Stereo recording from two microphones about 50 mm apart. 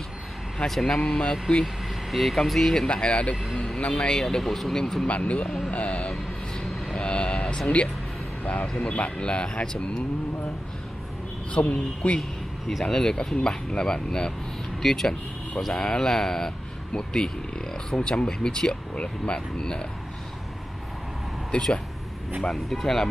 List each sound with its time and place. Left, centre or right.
0.7 s speech: centre
1.6 s speech: centre
2.9 s speech: left
3.5 s music: centre
3.8 s speech: left
5.0 s speech: left
5.7 s vehicle: left
8.5 s speech: left
11.5 s speech: left
12.2 s a sound: centre
12.8 s speech: centre
21.5 s speech: centre